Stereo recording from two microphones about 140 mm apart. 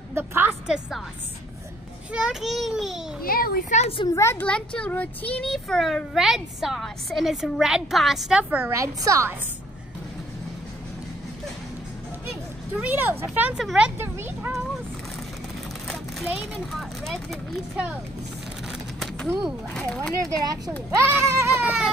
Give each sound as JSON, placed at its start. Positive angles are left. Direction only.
{"t": 0.1, "sound": "speech", "side_deg": -15}
{"t": 2.1, "sound": "a child's voice", "side_deg": -5}
{"t": 3.2, "sound": "a child's voice", "side_deg": 90}
{"t": 3.8, "sound": "a woman's voice", "side_deg": 40}
{"t": 4.1, "sound": "a child's voice", "side_deg": 20}
{"t": 8.7, "sound": "a woman's voice", "side_deg": -20}
{"t": 12.7, "sound": "speech", "side_deg": -10}
{"t": 13.9, "sound": "speech", "side_deg": -15}
{"t": 15.9, "sound": "speech", "side_deg": 0}
{"t": 18.9, "sound": "speech", "side_deg": 5}
{"t": 20.2, "sound": "a woman's voice", "side_deg": -25}